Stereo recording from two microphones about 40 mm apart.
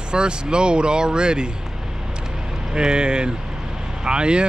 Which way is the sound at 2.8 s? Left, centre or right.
Right.